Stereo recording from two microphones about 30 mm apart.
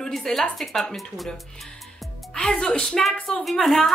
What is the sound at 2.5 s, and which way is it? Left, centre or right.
Speech, left.